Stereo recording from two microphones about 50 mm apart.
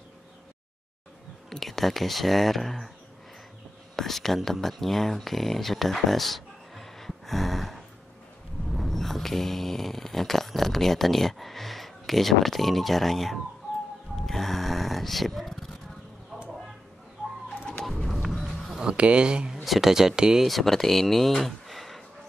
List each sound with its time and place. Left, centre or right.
1.5 s speech: centre
3.9 s speech: centre
8.7 s a sound: centre
14.1 s music: centre
17.8 s music: centre
18.8 s speech: right
19.6 s speech: centre
20.4 s speech: centre